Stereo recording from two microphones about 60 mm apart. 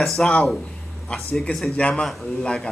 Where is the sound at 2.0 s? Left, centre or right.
Centre.